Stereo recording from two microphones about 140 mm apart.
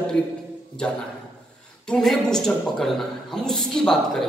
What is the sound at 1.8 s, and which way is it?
A man's voice, 5° left (ahead or behind).